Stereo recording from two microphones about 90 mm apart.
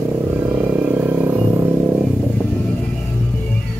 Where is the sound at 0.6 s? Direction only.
20° right (ahead or behind).